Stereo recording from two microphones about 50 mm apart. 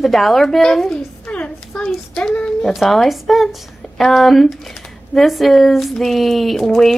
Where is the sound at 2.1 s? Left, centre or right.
Centre.